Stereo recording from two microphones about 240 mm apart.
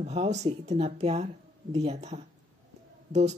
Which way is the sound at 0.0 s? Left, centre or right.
Right.